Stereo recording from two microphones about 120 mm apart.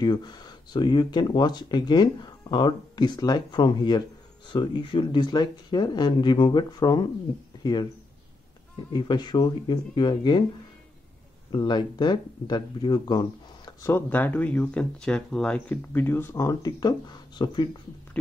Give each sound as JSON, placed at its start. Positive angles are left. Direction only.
{"t": 0.0, "sound": "speech", "side_deg": 35}
{"t": 7.5, "sound": "a sound", "side_deg": 30}
{"t": 8.9, "sound": "speech", "side_deg": 40}
{"t": 11.5, "sound": "speech", "side_deg": 40}
{"t": 13.9, "sound": "speech", "side_deg": 15}
{"t": 15.7, "sound": "speech", "side_deg": 15}